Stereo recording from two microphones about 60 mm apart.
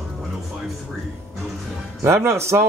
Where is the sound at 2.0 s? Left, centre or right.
Right.